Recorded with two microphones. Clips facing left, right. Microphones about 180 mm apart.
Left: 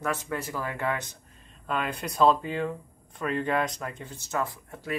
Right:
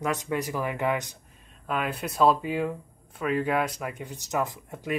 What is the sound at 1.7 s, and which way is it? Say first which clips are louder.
Speech: right 1 dB; 5° right (ahead or behind).